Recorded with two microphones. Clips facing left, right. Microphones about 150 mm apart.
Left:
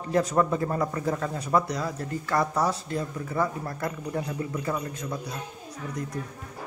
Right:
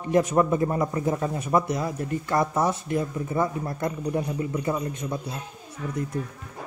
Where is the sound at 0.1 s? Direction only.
20° right (ahead or behind).